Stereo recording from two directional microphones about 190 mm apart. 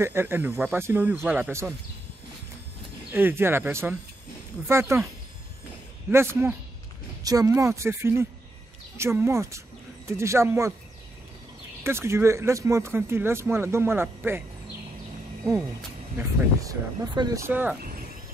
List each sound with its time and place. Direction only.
0.0 s speech: 10° right (ahead or behind)
3.1 s speech: 10° right (ahead or behind)
6.0 s speech: 10° right (ahead or behind)
11.8 s speech: 15° right (ahead or behind)
16.2 s speech: 15° right (ahead or behind)